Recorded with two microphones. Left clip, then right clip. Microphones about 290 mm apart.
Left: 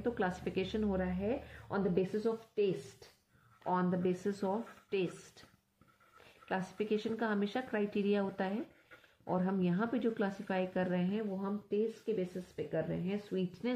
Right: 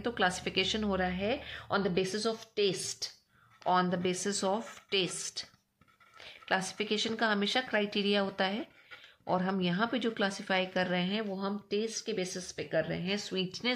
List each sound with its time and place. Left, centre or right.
0.0 s speech: right
6.2 s speech: right